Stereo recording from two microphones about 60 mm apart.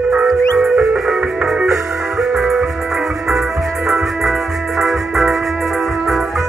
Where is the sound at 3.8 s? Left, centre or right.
Centre.